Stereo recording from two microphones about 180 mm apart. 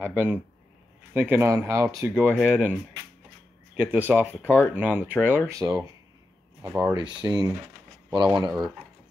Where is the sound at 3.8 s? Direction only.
10° right (ahead or behind).